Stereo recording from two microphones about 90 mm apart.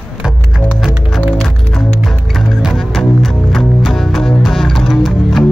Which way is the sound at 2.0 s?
Centre (ahead or behind).